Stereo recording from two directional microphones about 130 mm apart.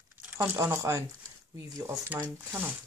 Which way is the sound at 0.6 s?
25° right (ahead or behind).